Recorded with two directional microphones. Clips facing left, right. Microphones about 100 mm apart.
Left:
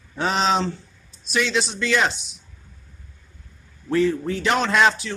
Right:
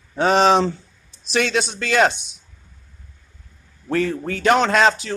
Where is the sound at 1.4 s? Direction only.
50° right (ahead or behind).